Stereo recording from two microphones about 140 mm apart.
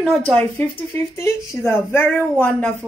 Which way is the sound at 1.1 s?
20° left (ahead or behind).